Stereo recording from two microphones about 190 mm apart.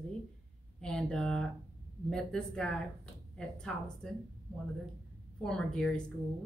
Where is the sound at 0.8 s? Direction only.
5° left (ahead or behind).